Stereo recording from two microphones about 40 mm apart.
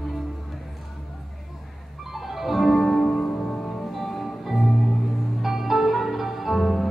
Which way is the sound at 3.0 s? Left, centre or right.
Centre.